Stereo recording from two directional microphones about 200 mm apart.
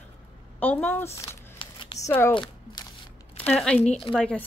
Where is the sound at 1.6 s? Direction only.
25° left (ahead or behind).